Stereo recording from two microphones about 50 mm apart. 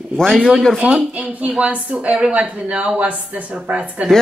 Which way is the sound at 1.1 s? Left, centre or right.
Right.